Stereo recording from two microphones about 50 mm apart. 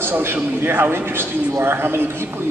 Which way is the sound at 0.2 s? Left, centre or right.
Right.